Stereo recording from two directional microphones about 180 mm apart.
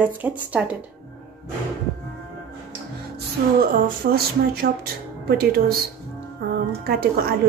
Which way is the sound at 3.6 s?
55° right (ahead or behind).